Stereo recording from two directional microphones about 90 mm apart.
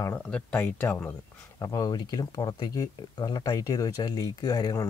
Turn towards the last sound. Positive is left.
turn(degrees=40)  # may be behind; listen again after turning